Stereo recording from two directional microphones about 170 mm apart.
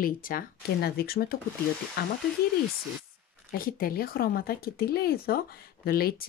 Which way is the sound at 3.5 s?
55° left (ahead or behind).